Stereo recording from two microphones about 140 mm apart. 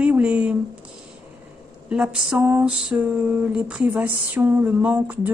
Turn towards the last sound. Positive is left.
turn(degrees=-10)  # may be behind; listen again after turning